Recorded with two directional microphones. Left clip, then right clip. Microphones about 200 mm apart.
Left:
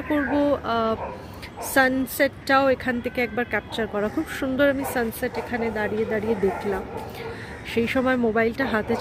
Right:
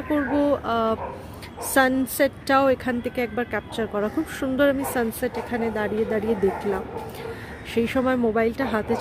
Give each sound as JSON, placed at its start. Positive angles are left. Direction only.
{"t": 0.4, "sound": "a woman's voice", "side_deg": -10}